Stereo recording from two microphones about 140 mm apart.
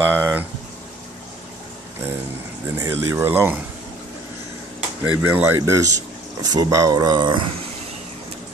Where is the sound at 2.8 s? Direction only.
15° right (ahead or behind).